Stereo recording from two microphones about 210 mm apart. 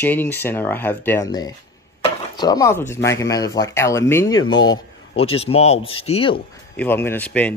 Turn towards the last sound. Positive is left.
turn(degrees=5)  # may be behind; listen again after turning